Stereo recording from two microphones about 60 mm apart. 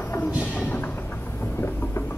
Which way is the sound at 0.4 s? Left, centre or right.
Left.